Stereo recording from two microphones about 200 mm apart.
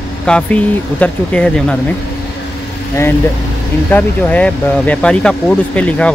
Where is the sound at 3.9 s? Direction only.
5° left (ahead or behind).